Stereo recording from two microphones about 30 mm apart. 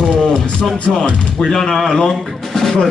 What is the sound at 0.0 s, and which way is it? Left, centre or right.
Music, left.